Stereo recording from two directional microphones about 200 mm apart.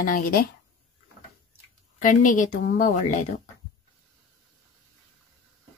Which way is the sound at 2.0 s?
40° left (ahead or behind).